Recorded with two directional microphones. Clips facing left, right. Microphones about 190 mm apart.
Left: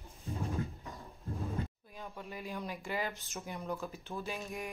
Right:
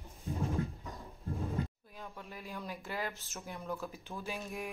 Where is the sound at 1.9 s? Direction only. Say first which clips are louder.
Left 3 dB; centre (ahead or behind).